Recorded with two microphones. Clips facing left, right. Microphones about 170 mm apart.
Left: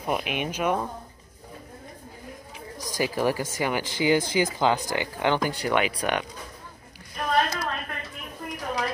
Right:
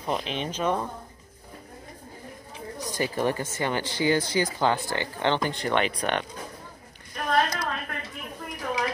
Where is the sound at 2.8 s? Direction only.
10° left (ahead or behind).